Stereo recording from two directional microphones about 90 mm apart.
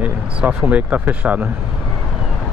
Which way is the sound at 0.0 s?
10° right (ahead or behind).